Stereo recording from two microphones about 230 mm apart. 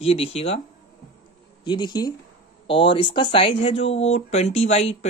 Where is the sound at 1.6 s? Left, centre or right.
Centre.